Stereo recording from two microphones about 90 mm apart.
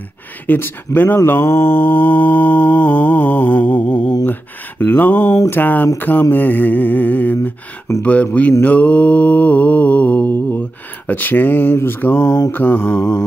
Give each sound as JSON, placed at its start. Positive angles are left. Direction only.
{"t": 0.5, "sound": "mantra", "side_deg": 25}
{"t": 4.3, "sound": "a sound", "side_deg": 20}
{"t": 5.5, "sound": "speech", "side_deg": 20}
{"t": 8.6, "sound": "mantra", "side_deg": 15}
{"t": 11.1, "sound": "speech", "side_deg": 20}